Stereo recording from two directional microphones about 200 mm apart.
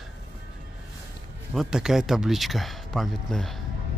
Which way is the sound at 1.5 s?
Centre (ahead or behind).